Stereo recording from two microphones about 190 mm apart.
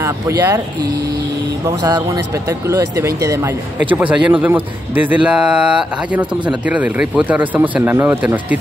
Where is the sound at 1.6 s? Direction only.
20° right (ahead or behind).